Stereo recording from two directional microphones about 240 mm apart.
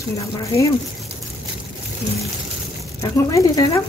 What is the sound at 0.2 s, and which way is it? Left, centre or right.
Speech, centre.